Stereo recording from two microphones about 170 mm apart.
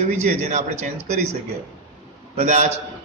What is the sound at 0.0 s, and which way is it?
Speech, 45° right (ahead or behind).